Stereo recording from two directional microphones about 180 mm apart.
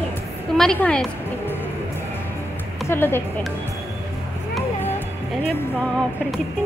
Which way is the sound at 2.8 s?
15° left (ahead or behind).